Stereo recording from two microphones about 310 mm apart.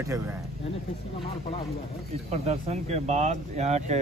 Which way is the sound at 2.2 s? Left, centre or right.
Right.